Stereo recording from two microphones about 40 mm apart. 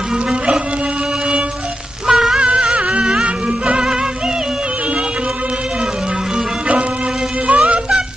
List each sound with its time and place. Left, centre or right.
2.0 s music: centre
2.3 s music: right
7.4 s music: right